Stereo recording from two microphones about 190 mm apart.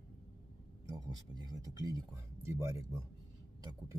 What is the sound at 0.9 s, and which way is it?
Speech, 20° right (ahead or behind).